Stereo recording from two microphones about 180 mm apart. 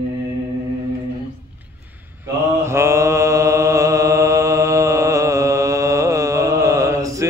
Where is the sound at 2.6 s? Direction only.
15° right (ahead or behind).